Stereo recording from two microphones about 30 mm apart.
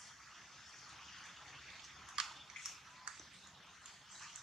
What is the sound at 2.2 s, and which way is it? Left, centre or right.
Bathtub, right.